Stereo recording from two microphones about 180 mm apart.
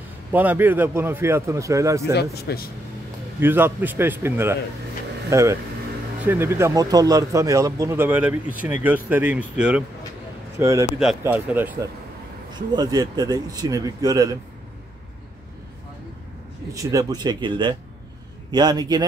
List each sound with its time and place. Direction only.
0.3 s speech: 10° right (ahead or behind)
2.3 s speech: 60° left (ahead or behind)
3.3 s speech: 10° right (ahead or behind)
12.5 s speech: 20° right (ahead or behind)
16.7 s speech: 20° right (ahead or behind)